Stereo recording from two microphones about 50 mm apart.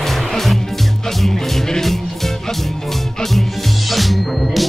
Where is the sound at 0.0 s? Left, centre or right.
Centre.